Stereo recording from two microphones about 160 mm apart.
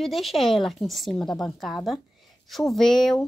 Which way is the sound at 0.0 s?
Centre (ahead or behind).